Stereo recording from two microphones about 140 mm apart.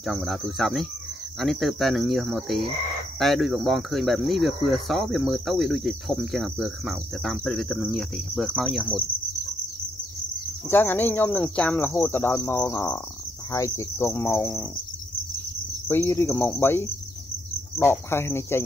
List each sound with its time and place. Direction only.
0.0 s cricket: centre (ahead or behind)
10.7 s cricket: 15° left (ahead or behind)
15.9 s cricket: 15° left (ahead or behind)